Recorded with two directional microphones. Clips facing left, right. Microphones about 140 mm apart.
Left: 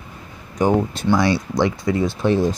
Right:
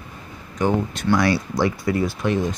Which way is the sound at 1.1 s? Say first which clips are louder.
Left 1 dB; 25° left (ahead or behind).